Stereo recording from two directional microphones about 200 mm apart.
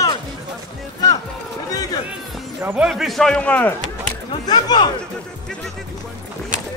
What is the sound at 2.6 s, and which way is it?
Speech, 5° right (ahead or behind).